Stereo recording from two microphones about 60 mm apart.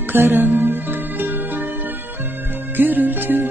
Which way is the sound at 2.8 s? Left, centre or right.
Right.